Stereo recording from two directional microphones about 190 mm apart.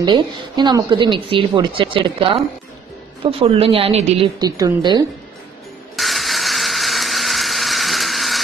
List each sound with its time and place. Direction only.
0.0 s a woman's voice: 25° right (ahead or behind)
4.4 s a woman's voice: 20° right (ahead or behind)
5.9 s ratchet: centre (ahead or behind)